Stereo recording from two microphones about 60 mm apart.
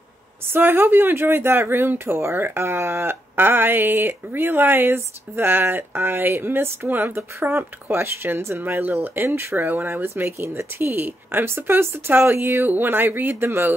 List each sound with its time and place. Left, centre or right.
0.5 s speech: right